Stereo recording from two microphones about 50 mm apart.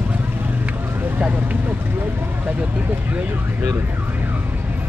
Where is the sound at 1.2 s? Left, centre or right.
Right.